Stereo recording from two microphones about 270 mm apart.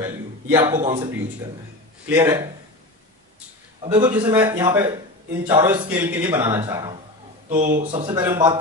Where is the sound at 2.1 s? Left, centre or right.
Centre.